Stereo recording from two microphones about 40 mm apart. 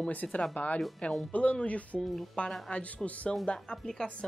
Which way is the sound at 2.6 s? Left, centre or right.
Left.